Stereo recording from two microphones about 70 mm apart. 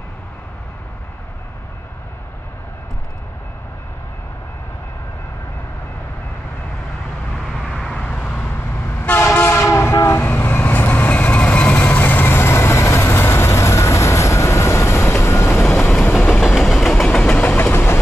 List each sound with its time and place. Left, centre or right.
7.7 s vehicle: centre
8.4 s train: left
10.2 s train: left
12.0 s vehicle: left
15.9 s train: centre
16.4 s train: centre
17.2 s vehicle: left
17.6 s vehicle: left